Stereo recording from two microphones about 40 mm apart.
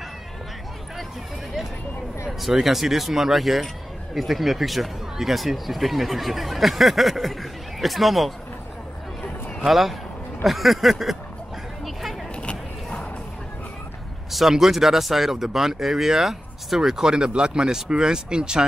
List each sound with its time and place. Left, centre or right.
2.5 s speech: centre
9.7 s speech: centre
11.8 s a sound: centre
12.4 s vehicle: left
14.5 s speech: centre